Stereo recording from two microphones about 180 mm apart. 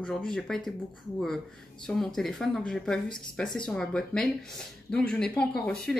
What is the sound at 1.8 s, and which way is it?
Speech, 5° left (ahead or behind).